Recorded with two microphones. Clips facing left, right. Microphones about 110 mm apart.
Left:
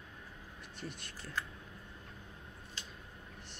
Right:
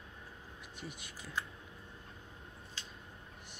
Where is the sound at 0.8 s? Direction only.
10° right (ahead or behind).